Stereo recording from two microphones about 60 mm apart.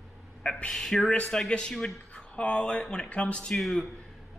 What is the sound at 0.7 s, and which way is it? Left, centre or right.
Speech, centre.